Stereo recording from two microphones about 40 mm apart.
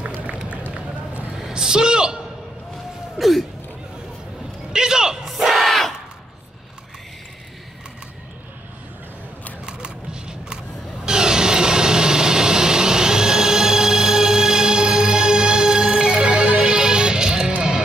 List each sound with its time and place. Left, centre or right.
0.0 s run: right
1.5 s a sound: centre
3.2 s a sound: centre
4.7 s music: centre
5.3 s crowd: centre
5.7 s a sound: centre
9.7 s single-lens reflex camera: right
11.1 s vehicle: centre
17.6 s music: centre